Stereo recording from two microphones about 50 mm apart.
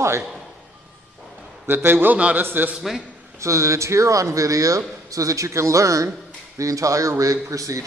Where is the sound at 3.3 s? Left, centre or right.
Right.